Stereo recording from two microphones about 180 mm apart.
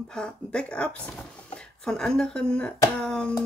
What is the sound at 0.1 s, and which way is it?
Speech, 5° left (ahead or behind).